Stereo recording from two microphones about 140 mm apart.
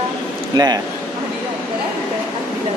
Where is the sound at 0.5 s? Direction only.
30° right (ahead or behind).